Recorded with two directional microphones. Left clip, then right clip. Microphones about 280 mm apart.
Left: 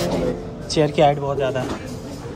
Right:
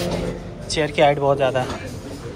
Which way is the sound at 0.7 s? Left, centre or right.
Centre.